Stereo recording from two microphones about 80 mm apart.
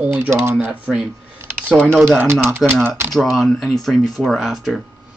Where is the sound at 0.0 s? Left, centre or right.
Right.